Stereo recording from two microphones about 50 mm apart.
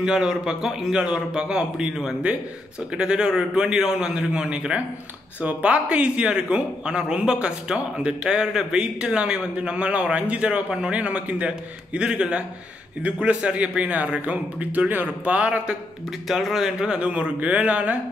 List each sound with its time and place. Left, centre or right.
0.0 s a man's voice: centre
16.3 s speech: centre
16.8 s a man's voice: centre